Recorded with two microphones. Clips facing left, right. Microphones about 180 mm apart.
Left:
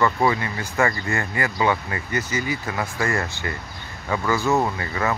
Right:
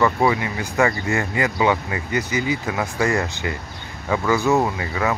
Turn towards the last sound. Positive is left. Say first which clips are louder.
# right 2 dB
turn(degrees=-15)  # may be behind; listen again after turning